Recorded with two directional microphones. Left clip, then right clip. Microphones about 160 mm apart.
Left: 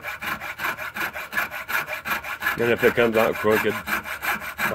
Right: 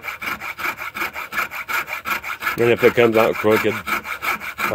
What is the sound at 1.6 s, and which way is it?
Rub, 5° right (ahead or behind).